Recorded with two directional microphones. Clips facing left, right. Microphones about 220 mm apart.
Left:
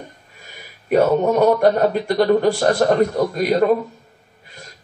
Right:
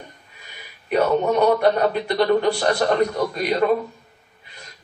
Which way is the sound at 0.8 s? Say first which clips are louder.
Left 3 dB; 45° left (ahead or behind).